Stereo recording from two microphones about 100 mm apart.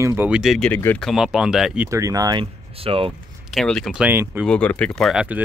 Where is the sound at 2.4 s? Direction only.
65° right (ahead or behind).